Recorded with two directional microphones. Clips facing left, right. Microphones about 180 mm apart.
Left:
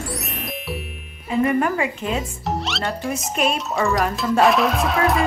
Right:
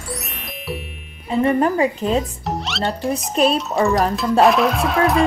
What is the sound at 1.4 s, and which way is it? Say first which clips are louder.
A woman's voice: right 3 dB; 30° right (ahead or behind).